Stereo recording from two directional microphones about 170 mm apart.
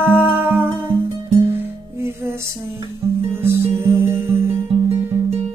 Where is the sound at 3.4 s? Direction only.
15° right (ahead or behind).